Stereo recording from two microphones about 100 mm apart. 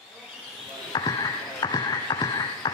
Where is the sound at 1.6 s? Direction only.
45° left (ahead or behind).